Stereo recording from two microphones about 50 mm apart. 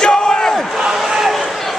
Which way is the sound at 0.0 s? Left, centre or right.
Centre.